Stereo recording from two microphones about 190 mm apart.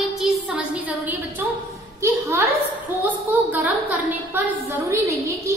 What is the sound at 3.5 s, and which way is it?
A woman's voice, 10° right (ahead or behind).